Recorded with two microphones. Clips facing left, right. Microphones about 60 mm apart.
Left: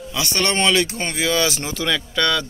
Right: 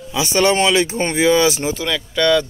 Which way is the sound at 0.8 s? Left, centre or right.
Right.